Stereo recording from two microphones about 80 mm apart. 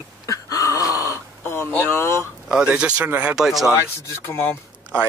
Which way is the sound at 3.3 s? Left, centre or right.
Centre.